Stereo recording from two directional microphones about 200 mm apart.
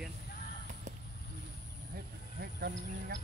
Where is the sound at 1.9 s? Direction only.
50° right (ahead or behind).